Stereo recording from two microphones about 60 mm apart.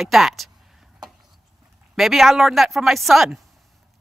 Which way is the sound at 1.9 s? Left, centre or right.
Centre.